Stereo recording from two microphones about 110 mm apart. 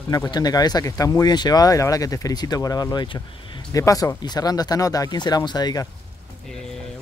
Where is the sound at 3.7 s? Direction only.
30° left (ahead or behind).